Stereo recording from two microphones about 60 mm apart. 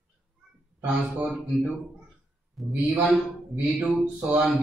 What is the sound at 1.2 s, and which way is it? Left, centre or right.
Speech, centre.